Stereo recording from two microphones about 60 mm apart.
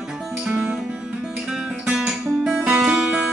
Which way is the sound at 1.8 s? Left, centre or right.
Centre.